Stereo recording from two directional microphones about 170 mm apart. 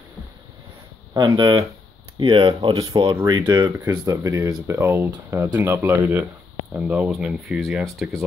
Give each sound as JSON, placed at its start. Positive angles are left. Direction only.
{"t": 1.1, "sound": "speech", "side_deg": -25}